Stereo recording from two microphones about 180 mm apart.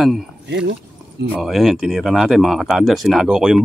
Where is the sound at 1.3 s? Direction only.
Centre (ahead or behind).